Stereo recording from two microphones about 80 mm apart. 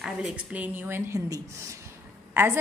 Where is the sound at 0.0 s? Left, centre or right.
Centre.